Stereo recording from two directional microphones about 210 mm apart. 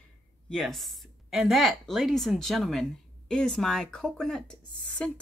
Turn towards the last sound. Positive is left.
turn(degrees=5)  # may be behind; listen again after turning